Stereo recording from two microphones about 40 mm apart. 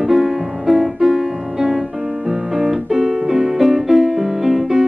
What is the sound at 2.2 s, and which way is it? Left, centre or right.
Keyboard, centre.